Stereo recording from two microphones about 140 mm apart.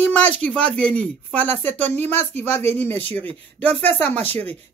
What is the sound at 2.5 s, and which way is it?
Speech, 50° right (ahead or behind).